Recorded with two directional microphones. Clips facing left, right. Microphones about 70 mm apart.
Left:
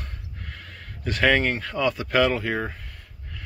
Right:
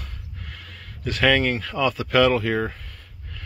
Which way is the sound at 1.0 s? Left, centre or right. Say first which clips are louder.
Right 1 dB; left.